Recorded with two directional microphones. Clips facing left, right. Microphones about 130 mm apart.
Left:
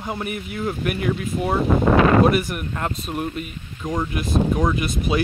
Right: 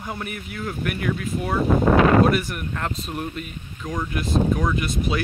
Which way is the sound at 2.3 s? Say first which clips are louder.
Left 2 dB; 10° left (ahead or behind).